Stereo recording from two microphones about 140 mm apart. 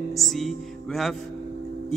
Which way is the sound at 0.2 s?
Centre (ahead or behind).